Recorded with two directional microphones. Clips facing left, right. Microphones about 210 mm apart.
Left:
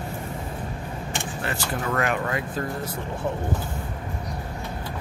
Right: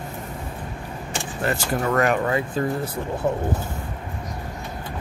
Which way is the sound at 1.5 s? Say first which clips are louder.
Right 6 dB; 45° right (ahead or behind).